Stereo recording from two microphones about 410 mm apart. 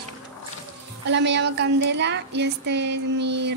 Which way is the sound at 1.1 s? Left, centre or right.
Right.